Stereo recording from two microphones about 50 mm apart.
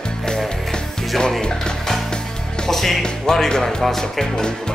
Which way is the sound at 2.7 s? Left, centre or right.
Centre.